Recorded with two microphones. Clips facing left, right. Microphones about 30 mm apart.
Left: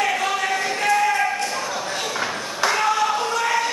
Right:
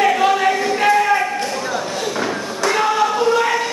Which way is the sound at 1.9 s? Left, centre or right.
Centre.